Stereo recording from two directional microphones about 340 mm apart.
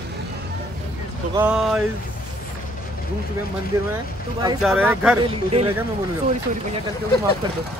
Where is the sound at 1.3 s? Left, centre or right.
Centre.